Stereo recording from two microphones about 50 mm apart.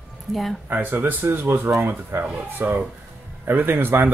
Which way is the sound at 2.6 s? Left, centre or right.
Right.